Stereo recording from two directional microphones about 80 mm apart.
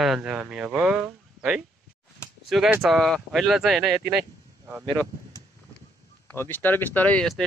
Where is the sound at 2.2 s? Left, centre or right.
Left.